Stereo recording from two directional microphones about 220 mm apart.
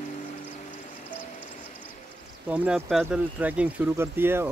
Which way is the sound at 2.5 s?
5° right (ahead or behind).